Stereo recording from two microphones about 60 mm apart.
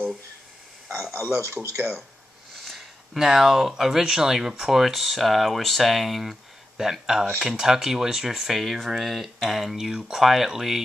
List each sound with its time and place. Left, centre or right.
1.3 s speech: right
2.6 s speech: centre